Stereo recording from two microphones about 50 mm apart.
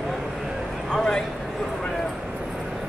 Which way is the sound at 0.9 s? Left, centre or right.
Centre.